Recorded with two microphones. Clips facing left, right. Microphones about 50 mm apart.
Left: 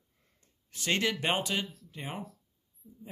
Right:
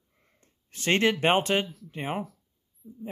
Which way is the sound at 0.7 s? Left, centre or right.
Right.